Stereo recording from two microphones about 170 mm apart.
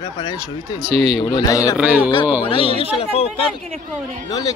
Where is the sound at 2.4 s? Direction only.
30° left (ahead or behind).